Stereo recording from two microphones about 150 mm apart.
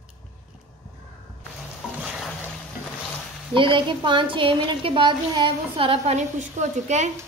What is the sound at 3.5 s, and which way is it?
A woman's voice, 35° right (ahead or behind).